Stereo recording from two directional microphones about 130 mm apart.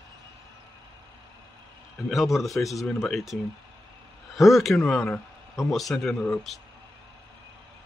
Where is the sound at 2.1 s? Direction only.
Centre (ahead or behind).